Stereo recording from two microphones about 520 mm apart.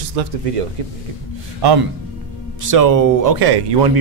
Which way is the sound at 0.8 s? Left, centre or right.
Right.